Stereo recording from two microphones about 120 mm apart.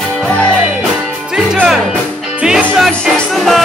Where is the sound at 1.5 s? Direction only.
5° right (ahead or behind).